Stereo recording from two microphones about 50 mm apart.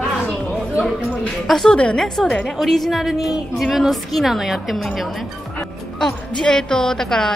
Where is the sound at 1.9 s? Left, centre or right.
Centre.